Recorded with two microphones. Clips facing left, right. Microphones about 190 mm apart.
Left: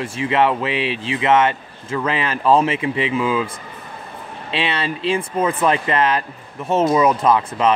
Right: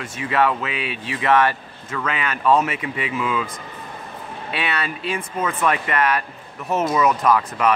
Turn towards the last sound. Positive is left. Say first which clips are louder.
# left 2 dB
turn(degrees=25)  # may be behind; listen again after turning